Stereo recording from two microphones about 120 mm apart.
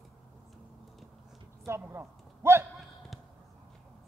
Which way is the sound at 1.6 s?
20° right (ahead or behind).